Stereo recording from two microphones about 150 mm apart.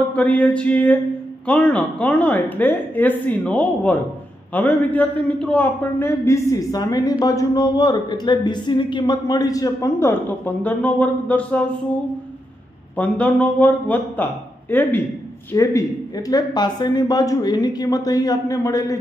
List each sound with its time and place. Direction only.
0.1 s a woman's voice: 10° left (ahead or behind)
12.9 s a woman's voice: 10° left (ahead or behind)